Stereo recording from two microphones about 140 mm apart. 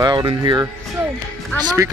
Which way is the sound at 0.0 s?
30° right (ahead or behind).